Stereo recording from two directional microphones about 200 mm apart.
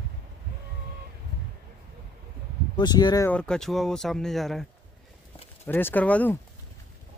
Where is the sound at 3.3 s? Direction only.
5° left (ahead or behind).